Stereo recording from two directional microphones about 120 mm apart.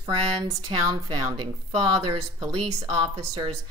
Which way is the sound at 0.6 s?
40° right (ahead or behind).